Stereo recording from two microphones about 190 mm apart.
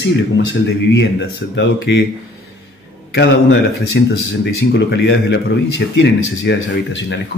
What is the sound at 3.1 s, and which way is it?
A man's voice, 65° left (ahead or behind).